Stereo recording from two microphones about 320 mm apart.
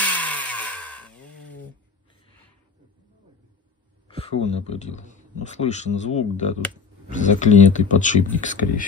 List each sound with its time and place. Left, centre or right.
0.0 s chainsaw: centre
4.1 s speech: centre